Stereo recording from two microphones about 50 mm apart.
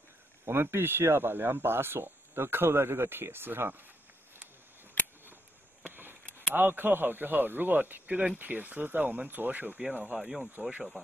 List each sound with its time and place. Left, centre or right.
0.5 s speech: right
5.9 s speech: right
10.1 s speech: centre